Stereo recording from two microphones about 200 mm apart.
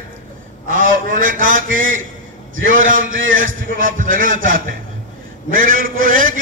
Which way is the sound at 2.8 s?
45° right (ahead or behind).